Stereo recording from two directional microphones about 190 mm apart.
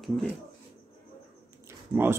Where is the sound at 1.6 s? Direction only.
10° right (ahead or behind).